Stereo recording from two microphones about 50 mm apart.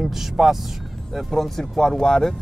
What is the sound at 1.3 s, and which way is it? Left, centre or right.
Speech, centre.